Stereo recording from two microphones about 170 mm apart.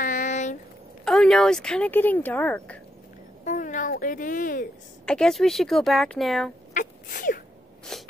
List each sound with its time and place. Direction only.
0.0 s a sound: 50° left (ahead or behind)
1.0 s speech: 5° left (ahead or behind)
3.4 s speech: 50° left (ahead or behind)
5.0 s speech: 5° left (ahead or behind)
6.7 s sneeze: 50° left (ahead or behind)
7.9 s sneeze: 5° left (ahead or behind)